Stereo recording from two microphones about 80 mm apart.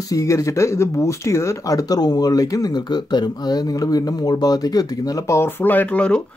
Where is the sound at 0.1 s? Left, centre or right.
Left.